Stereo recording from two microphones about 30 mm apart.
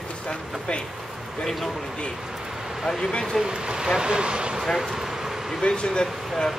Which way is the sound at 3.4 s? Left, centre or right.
Right.